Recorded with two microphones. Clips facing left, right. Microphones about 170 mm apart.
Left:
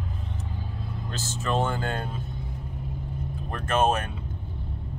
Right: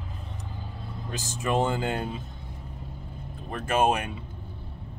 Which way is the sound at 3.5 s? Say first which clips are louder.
Even; 10° right (ahead or behind).